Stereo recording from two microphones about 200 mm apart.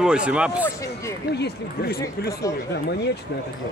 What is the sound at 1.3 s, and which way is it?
Speech, 55° left (ahead or behind).